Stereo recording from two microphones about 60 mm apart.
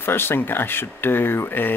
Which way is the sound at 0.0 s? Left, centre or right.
Left.